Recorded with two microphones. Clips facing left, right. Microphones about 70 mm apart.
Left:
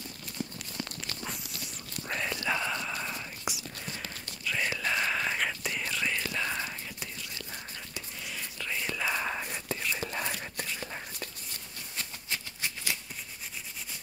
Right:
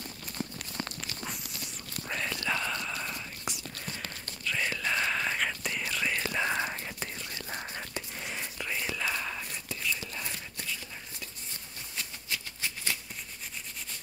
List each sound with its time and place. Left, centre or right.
0.4 s crumpling: right
2.0 s whispering: centre
6.2 s whispering: right
7.5 s a sound: right
8.5 s whispering: centre
8.9 s whispering: centre
9.4 s whispering: left
12.0 s a sound: left